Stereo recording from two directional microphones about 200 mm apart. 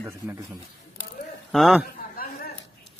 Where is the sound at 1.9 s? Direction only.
45° left (ahead or behind).